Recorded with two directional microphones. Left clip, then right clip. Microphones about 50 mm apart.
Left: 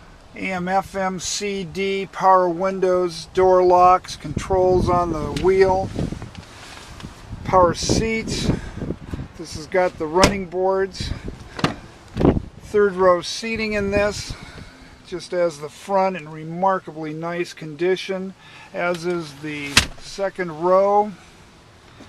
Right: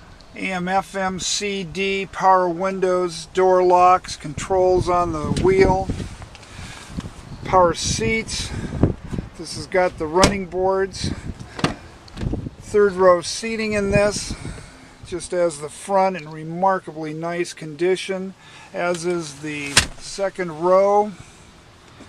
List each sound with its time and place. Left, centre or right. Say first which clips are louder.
0.4 s speech: even; centre; by 5.9 s left
7.0 s a sound: right 3 dB; left
8.0 s speech: right 1 dB; centre
12.7 s speech: right 1 dB; centre
13.0 s speech: right 2 dB; right; by 20.9 s centre